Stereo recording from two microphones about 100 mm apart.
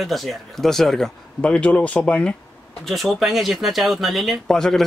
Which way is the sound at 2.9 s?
Centre (ahead or behind).